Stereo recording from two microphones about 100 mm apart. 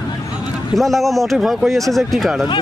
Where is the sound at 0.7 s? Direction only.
Centre (ahead or behind).